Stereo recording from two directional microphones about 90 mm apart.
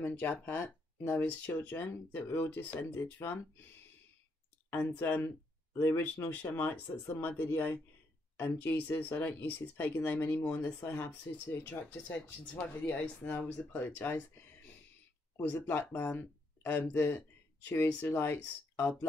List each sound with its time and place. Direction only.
0.0 s speech: 20° left (ahead or behind)
4.6 s speech: 25° left (ahead or behind)
5.2 s a sound: 30° left (ahead or behind)
5.9 s speech: 20° left (ahead or behind)